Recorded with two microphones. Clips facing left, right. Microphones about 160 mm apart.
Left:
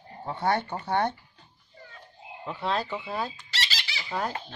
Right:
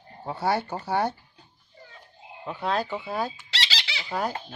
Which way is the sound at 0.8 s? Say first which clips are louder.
Even; 5° right (ahead or behind).